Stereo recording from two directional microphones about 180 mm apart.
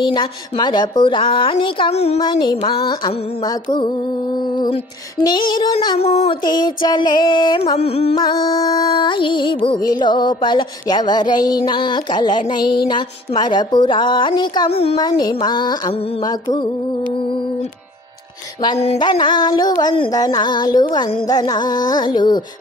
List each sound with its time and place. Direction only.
0.0 s music: 25° left (ahead or behind)
2.2 s music: 25° left (ahead or behind)
5.2 s music: 25° left (ahead or behind)
5.9 s a sound: 35° left (ahead or behind)
6.4 s music: 25° left (ahead or behind)
15.0 s music: 20° left (ahead or behind)
18.6 s music: 30° left (ahead or behind)